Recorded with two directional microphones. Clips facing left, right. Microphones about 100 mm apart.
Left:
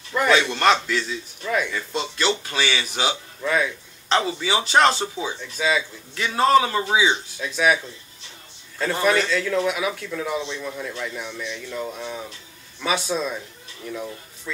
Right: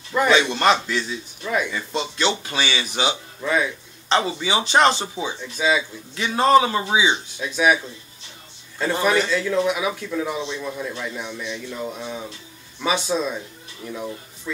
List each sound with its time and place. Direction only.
0.1 s a man's voice: 20° right (ahead or behind)